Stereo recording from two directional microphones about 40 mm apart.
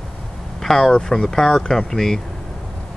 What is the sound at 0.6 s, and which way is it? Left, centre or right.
Speech, centre.